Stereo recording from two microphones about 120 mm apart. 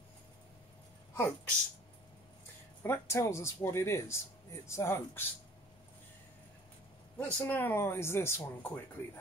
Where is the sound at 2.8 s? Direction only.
20° left (ahead or behind).